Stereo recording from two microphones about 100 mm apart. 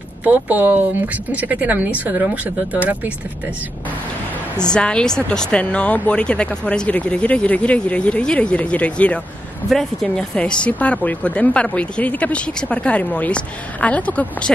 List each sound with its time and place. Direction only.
0.2 s speech: 15° right (ahead or behind)
4.7 s speech: 10° left (ahead or behind)